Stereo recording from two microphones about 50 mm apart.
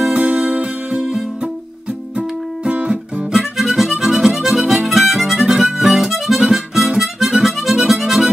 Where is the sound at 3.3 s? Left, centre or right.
Centre.